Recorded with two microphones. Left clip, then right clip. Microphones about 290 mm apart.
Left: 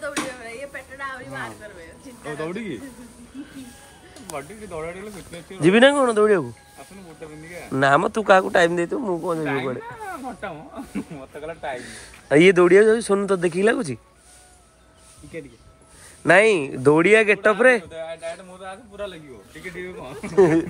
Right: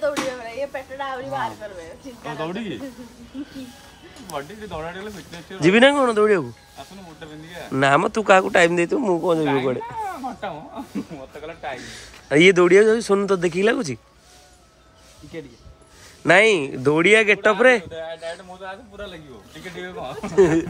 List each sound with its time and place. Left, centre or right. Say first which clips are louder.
0.0 s a sound: right 5 dB; right
5.6 s a man's voice: even; centre
7.7 s speech: even; centre
11.8 s a man's voice: right 1 dB; centre
16.2 s a man's voice: even; centre
19.8 s a man's voice: right 5 dB; centre